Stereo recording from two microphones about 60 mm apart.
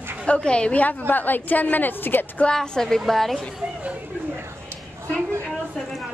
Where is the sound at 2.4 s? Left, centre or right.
Centre.